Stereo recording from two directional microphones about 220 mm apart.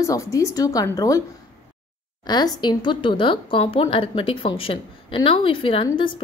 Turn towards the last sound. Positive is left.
turn(degrees=25)  # may be behind; listen again after turning